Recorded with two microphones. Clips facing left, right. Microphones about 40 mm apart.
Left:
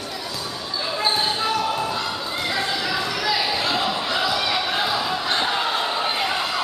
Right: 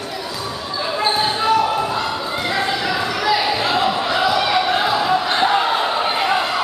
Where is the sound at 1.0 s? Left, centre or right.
Centre.